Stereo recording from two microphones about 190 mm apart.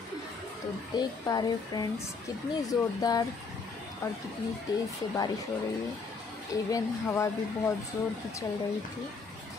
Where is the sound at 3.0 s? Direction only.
20° left (ahead or behind).